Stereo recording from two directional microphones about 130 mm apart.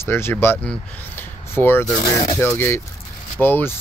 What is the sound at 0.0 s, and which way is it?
Speech, 20° left (ahead or behind).